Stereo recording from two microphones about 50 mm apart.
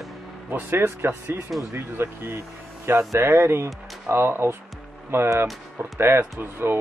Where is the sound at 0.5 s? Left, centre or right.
Right.